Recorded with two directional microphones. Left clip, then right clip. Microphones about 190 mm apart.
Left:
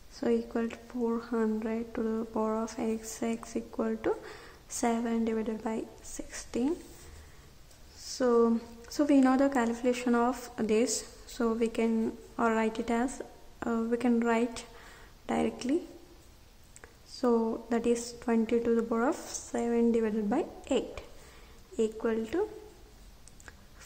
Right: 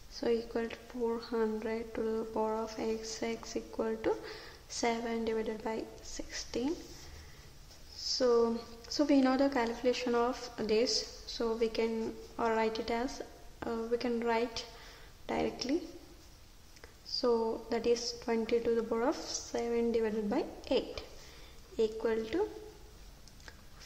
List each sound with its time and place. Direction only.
0.1 s speech: 15° left (ahead or behind)
8.2 s speech: 15° left (ahead or behind)
17.2 s a woman's voice: 20° left (ahead or behind)